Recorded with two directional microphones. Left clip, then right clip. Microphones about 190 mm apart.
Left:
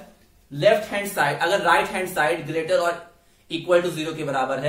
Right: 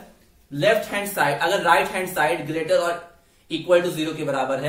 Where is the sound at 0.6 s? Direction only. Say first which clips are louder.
Left 1 dB; 15° left (ahead or behind).